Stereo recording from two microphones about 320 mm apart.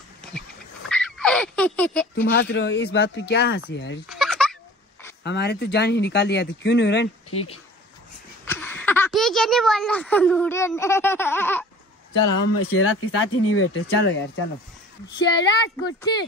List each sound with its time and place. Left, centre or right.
0.8 s a sound: centre
2.2 s speech: left
4.1 s a sound: centre
5.2 s speech: left
8.5 s speech: centre
12.5 s speech: left